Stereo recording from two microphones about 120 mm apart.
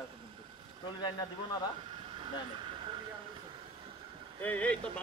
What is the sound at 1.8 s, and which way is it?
Vehicle, 45° right (ahead or behind).